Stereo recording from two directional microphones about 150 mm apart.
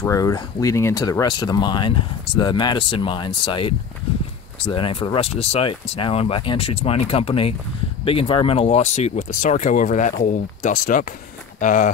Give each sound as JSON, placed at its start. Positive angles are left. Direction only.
{"t": 0.0, "sound": "speech", "side_deg": 20}
{"t": 4.7, "sound": "speech", "side_deg": 35}